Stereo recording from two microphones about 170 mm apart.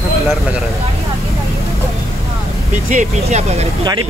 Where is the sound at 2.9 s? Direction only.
45° right (ahead or behind).